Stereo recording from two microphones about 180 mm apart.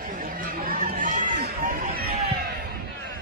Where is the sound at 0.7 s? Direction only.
50° right (ahead or behind).